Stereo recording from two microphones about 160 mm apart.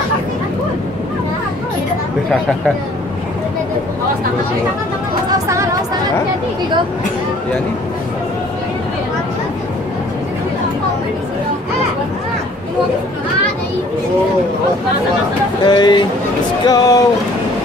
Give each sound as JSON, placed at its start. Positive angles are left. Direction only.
{"t": 5.3, "sound": "vehicle", "side_deg": -20}
{"t": 15.6, "sound": "speech", "side_deg": 30}